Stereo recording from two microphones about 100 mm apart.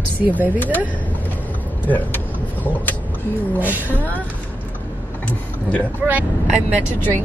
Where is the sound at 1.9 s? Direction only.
15° left (ahead or behind).